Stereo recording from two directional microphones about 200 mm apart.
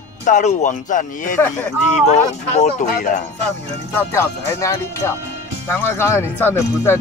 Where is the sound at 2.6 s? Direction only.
40° left (ahead or behind).